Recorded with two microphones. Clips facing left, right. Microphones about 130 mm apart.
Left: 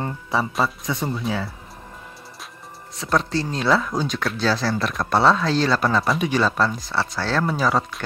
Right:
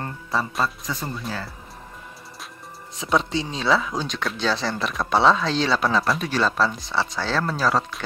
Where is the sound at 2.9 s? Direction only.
Centre (ahead or behind).